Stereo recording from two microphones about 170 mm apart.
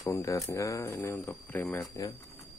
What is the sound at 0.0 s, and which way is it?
Speech, 20° left (ahead or behind).